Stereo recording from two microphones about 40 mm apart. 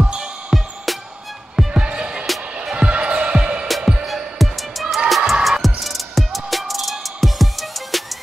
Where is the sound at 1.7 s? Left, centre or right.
Right.